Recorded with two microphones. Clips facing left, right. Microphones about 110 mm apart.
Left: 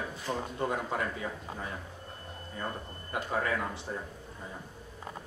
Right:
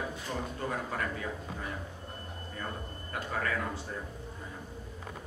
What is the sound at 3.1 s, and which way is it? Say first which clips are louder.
Speech: left 3 dB; 20° left (ahead or behind).